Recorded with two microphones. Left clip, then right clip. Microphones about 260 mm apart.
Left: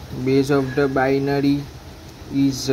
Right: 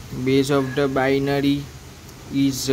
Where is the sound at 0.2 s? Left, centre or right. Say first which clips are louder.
Left 1 dB; centre.